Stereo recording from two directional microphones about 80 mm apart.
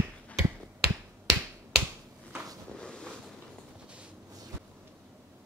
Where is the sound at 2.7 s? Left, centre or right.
Centre.